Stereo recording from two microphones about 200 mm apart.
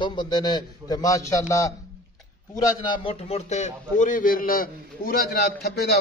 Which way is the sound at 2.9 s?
30° left (ahead or behind).